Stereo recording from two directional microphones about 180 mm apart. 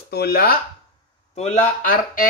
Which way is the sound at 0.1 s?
60° left (ahead or behind).